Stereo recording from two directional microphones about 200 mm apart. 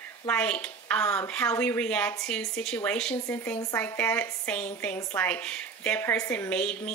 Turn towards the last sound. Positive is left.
turn(degrees=5)  # may be behind; listen again after turning